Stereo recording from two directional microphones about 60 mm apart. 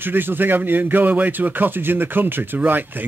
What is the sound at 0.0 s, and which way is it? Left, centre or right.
A man's voice, right.